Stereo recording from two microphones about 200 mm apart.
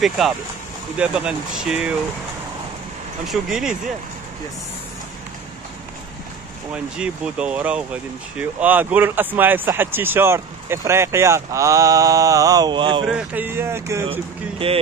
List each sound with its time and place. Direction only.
0.9 s speech: 5° right (ahead or behind)
3.3 s speech: centre (ahead or behind)
6.7 s speech: 5° right (ahead or behind); by 13.0 s 25° right (ahead or behind)
13.0 s speech: 5° right (ahead or behind)
14.6 s speech: 30° right (ahead or behind)